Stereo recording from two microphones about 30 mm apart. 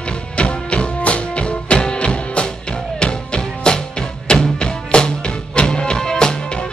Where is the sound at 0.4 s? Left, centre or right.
Left.